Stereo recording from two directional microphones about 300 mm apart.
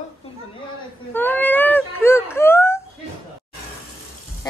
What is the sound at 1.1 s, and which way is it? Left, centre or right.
Speech, centre.